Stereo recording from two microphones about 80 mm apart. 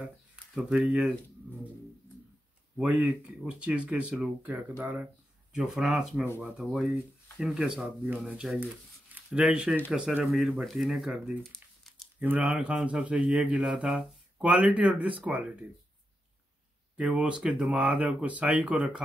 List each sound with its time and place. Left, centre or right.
0.6 s speech: centre
2.8 s speech: centre
5.5 s speech: centre
11.4 s crumpling: centre
12.2 s speech: centre
13.9 s speech: centre
16.9 s speech: centre